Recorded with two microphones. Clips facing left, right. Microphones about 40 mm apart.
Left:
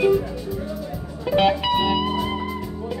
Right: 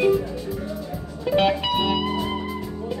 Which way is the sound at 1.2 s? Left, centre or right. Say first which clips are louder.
Left 1 dB; centre.